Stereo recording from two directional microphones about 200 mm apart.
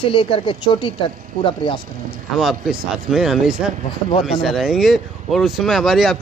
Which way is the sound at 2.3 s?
Centre (ahead or behind).